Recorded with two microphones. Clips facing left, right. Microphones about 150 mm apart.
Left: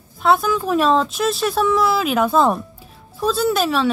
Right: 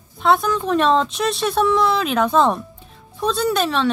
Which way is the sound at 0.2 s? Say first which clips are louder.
Left 1 dB; 5° left (ahead or behind).